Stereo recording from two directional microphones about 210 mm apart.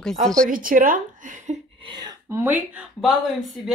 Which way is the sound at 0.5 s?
40° right (ahead or behind).